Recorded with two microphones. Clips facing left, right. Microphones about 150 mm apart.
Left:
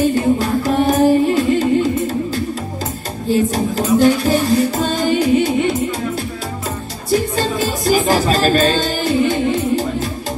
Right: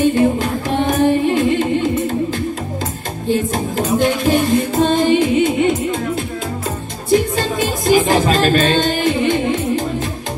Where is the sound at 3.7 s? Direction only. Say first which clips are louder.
Left 4 dB; 40° left (ahead or behind).